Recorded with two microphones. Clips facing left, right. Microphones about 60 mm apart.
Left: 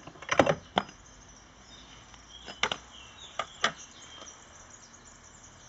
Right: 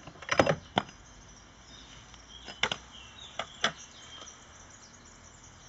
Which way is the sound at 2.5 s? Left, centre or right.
Centre.